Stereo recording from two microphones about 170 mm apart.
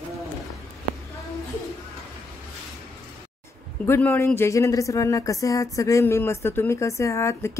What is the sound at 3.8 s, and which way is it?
A woman's voice, 15° left (ahead or behind).